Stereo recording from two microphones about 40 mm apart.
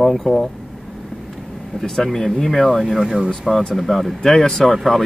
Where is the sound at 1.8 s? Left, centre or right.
Centre.